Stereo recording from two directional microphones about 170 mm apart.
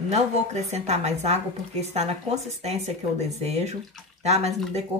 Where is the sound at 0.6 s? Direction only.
40° right (ahead or behind).